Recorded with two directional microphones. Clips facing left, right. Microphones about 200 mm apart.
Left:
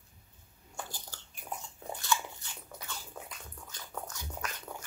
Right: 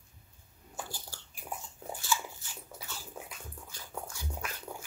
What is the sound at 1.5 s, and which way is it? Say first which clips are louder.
Biting: even; 10° right (ahead or behind).